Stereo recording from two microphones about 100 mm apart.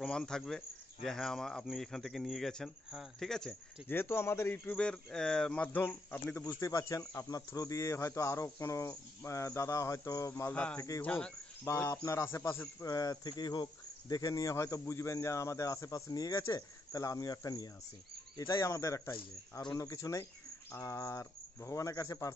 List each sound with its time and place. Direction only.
0.0 s speech: 5° left (ahead or behind)
3.8 s speech: 20° left (ahead or behind)
4.7 s speech: 10° left (ahead or behind)
6.6 s speech: 30° left (ahead or behind)
11.0 s speech: 10° left (ahead or behind)
11.7 s speech: 30° left (ahead or behind)
12.8 s speech: 40° left (ahead or behind)